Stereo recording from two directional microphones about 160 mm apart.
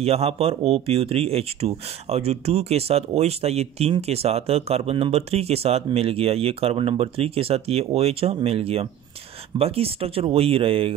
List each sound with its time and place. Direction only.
0.0 s speech: 40° right (ahead or behind)